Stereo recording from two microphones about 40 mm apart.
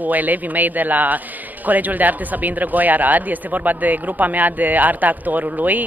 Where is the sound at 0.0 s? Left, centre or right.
Right.